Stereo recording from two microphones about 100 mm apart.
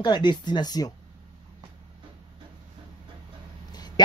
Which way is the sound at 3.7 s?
45° left (ahead or behind).